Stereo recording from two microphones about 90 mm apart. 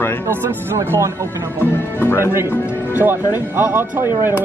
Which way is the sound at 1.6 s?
25° left (ahead or behind).